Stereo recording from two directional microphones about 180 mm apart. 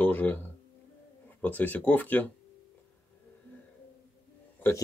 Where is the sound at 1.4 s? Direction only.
10° left (ahead or behind).